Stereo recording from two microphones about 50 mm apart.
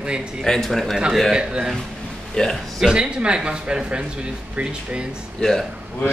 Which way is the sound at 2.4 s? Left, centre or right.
Centre.